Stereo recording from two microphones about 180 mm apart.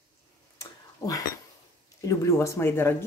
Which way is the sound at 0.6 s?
20° left (ahead or behind).